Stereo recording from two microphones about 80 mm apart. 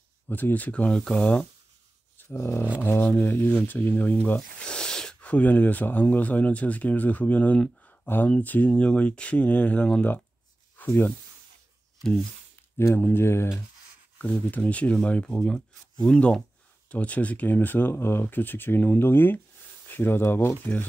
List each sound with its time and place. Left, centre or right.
0.3 s speech: left
2.2 s speech: left
12.7 s speech: left
14.1 s speech: centre